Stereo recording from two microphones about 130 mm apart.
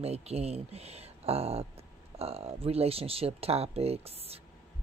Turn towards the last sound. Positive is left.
turn(degrees=-50)  # may be behind; listen again after turning